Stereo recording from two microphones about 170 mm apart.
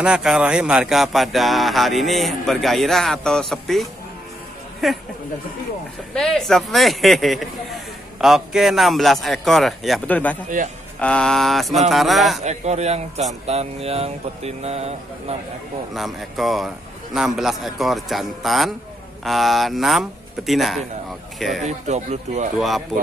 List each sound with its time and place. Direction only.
0.0 s speech: 5° right (ahead or behind)
6.1 s speech: 5° left (ahead or behind)
10.6 s speech: 50° right (ahead or behind)
11.0 s speech: 5° left (ahead or behind)
12.4 s a sound: 40° right (ahead or behind)
15.9 s speech: centre (ahead or behind)
21.6 s speech: 40° right (ahead or behind)
22.6 s speech: centre (ahead or behind)